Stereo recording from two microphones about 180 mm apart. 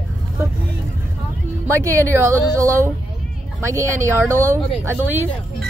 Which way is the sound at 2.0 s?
15° right (ahead or behind).